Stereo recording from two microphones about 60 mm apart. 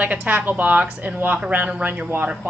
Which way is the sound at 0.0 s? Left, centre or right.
Right.